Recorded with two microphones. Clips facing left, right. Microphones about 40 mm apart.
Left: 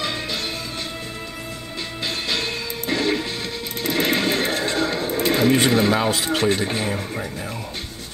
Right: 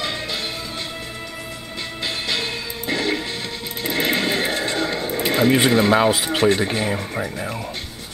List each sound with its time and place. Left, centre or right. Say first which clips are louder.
2.2 s music: even; centre
3.8 s neigh: even; centre
5.9 s speech: right 3 dB; centre